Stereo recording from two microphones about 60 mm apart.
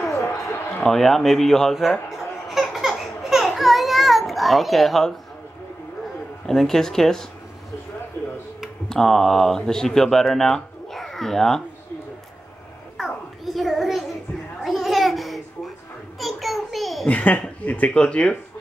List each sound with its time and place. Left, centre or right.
0.8 s baby laughter: centre
6.4 s speech: centre
8.8 s speech: centre
12.9 s a sound: centre
17.1 s speech: left